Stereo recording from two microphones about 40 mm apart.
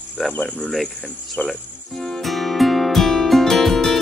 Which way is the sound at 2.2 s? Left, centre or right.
Centre.